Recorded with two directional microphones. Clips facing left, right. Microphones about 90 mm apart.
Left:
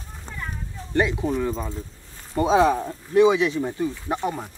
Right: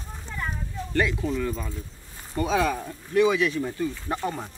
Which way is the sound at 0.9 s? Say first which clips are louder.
Left 3 dB; 20° left (ahead or behind).